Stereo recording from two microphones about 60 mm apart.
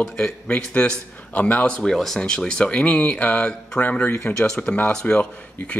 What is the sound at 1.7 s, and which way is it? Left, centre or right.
A man's voice, centre.